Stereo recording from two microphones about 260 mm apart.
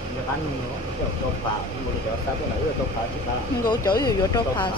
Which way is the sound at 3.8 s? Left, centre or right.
Centre.